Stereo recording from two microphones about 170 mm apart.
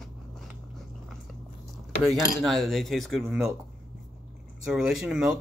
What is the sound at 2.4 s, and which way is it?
Speech, centre (ahead or behind).